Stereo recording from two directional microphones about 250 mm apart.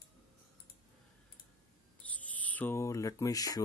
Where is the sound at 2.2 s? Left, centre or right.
Centre.